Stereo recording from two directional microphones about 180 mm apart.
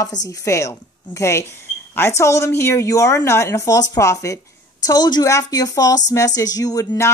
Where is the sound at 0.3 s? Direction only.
15° left (ahead or behind).